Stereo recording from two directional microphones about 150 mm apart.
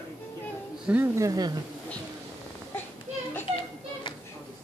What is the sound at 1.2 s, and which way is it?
Speech, 25° right (ahead or behind).